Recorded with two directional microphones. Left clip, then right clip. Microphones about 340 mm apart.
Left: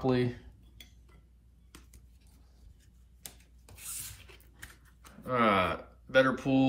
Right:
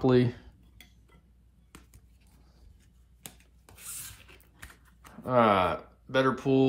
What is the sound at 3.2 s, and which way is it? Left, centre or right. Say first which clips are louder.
Rub: right 2 dB; centre.